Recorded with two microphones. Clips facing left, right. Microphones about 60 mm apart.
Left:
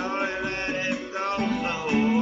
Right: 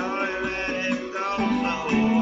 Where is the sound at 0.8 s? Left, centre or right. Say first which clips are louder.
Right 2 dB; centre.